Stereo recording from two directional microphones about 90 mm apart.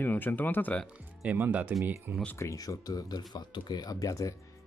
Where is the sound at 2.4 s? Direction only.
40° left (ahead or behind).